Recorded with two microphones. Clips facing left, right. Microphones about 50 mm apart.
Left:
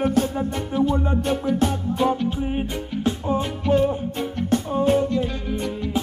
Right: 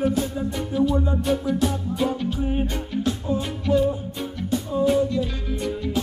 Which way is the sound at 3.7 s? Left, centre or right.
Left.